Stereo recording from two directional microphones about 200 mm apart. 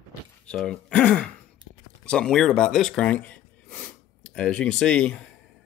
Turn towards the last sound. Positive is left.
turn(degrees=5)  # may be behind; listen again after turning